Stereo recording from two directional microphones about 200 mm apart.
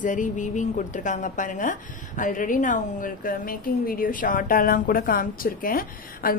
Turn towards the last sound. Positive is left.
turn(degrees=45)  # may be behind; listen again after turning